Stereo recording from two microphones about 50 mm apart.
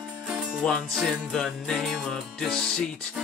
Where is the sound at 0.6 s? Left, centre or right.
Centre.